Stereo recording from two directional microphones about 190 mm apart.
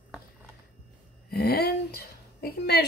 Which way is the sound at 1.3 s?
55° left (ahead or behind).